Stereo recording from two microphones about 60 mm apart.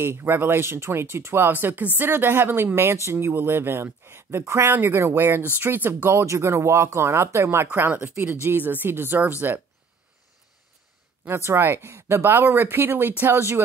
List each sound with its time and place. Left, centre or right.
0.0 s speech: right
6.0 s speech: right
7.7 s speech: right
11.2 s speech: right